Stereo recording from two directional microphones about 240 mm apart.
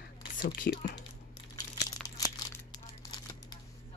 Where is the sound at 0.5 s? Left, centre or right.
Left.